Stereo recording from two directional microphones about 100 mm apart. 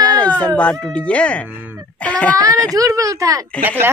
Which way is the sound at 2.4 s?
35° right (ahead or behind).